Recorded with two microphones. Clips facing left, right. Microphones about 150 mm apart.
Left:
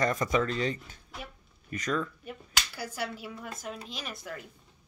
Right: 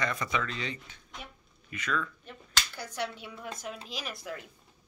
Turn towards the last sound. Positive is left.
turn(degrees=0)  # may be behind; listen again after turning